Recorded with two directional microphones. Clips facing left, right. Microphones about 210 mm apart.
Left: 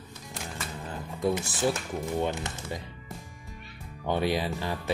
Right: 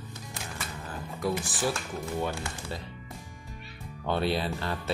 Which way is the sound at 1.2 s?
25° left (ahead or behind).